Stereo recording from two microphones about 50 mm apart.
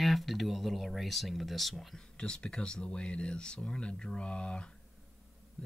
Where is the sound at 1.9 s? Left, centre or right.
Centre.